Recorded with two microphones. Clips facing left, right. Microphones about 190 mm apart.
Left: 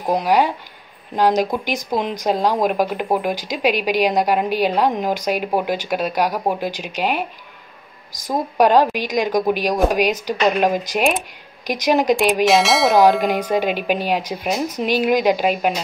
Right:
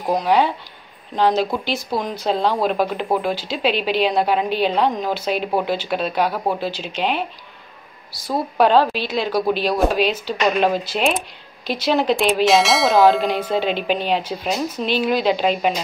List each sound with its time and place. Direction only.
0.0 s speech: 15° left (ahead or behind)
12.4 s speech: centre (ahead or behind)
13.2 s speech: 15° left (ahead or behind)